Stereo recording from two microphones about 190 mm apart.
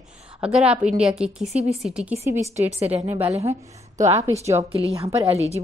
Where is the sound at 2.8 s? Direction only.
35° right (ahead or behind).